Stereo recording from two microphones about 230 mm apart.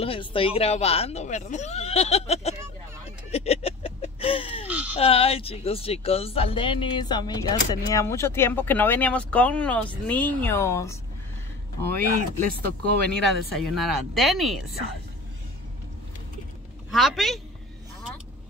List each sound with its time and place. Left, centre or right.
0.0 s speech: left
3.3 s a sound: left
4.6 s a sound: centre
4.9 s speech: left
11.9 s speech: right
13.7 s speech: centre
16.9 s speech: centre